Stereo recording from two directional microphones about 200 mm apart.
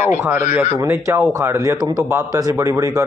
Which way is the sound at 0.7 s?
15° right (ahead or behind).